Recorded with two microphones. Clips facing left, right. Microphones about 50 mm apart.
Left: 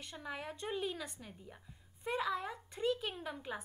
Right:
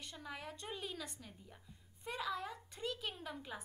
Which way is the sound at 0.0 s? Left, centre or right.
Centre.